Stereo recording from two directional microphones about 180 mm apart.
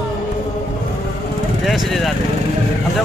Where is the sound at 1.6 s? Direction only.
Centre (ahead or behind).